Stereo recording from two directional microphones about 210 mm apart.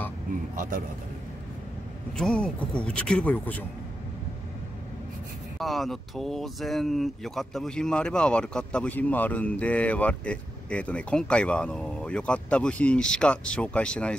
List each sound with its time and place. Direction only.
0.6 s a man's voice: 40° right (ahead or behind)
2.1 s speech: 5° left (ahead or behind)
5.6 s speech: centre (ahead or behind)